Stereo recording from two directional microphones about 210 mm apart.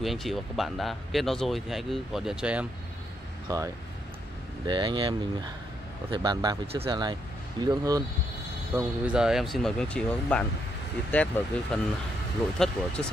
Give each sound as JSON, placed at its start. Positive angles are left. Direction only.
{"t": 0.0, "sound": "speech", "side_deg": 0}
{"t": 3.4, "sound": "speech", "side_deg": -15}
{"t": 6.1, "sound": "speech", "side_deg": -20}
{"t": 8.7, "sound": "speech", "side_deg": -5}